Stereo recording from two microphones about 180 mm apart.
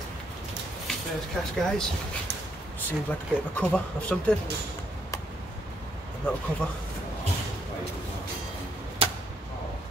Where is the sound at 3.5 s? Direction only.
5° left (ahead or behind).